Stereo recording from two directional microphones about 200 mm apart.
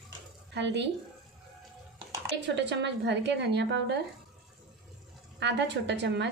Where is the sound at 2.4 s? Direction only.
60° right (ahead or behind).